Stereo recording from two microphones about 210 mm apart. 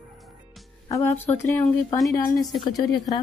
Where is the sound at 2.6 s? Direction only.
15° left (ahead or behind).